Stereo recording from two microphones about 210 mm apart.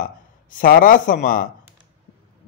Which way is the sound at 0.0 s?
40° left (ahead or behind).